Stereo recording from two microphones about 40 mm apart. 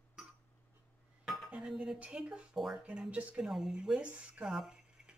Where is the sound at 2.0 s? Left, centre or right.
Right.